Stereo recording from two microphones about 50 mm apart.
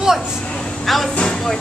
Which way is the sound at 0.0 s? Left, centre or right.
Centre.